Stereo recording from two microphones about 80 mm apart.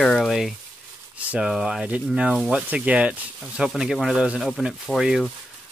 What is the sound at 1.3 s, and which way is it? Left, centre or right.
Speech, centre.